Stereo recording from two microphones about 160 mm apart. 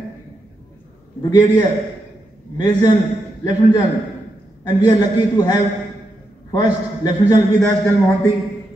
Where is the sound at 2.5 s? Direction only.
25° left (ahead or behind).